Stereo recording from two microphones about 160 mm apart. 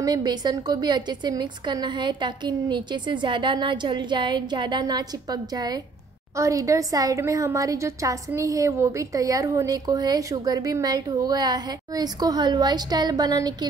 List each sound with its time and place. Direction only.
0.0 s a woman's voice: 25° right (ahead or behind)